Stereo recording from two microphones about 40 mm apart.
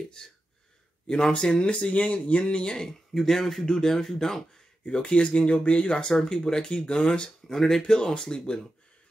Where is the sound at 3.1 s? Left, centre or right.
Centre.